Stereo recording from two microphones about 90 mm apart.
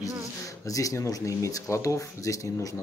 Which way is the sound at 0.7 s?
40° left (ahead or behind).